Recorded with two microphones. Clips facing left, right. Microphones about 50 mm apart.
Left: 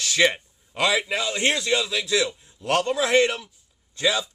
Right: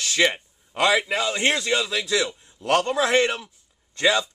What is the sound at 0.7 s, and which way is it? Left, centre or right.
Speech, right.